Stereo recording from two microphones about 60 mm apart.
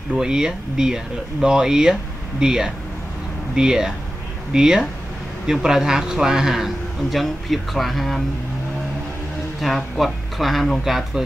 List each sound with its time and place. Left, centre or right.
0.1 s a man's voice: centre
9.6 s a man's voice: centre